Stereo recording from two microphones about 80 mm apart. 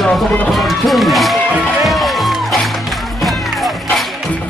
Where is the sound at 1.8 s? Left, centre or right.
Centre.